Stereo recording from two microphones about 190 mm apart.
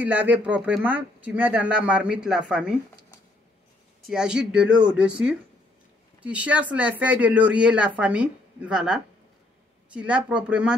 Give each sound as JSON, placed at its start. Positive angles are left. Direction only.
{"t": 0.0, "sound": "speech", "side_deg": -10}
{"t": 4.0, "sound": "speech", "side_deg": -5}